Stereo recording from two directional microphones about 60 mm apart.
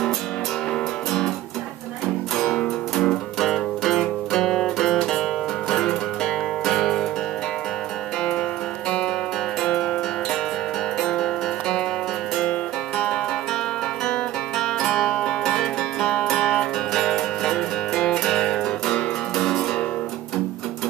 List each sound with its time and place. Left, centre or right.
2.6 s music: centre
9.6 s music: centre
11.0 s music: centre
14.6 s music: centre